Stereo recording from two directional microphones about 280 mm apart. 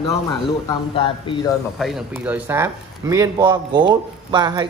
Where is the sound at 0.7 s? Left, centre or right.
Centre.